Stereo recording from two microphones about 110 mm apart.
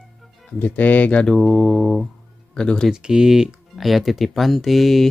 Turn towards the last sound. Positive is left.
turn(degrees=0)  # may be behind; listen again after turning